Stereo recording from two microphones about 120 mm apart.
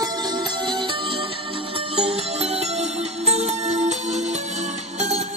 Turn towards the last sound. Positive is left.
turn(degrees=-70)  # may be behind; listen again after turning